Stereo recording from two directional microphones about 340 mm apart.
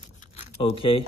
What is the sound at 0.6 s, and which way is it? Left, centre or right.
Speech, centre.